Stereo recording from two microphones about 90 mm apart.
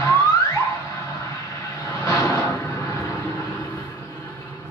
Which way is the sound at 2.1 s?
35° left (ahead or behind).